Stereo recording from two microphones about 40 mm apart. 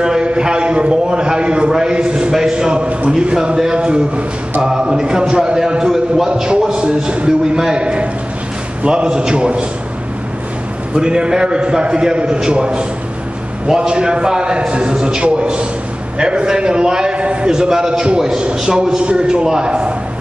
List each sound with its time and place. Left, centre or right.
0.0 s a man's voice: centre
7.8 s a man's voice: right
11.0 s a man's voice: centre
17.5 s a man's voice: centre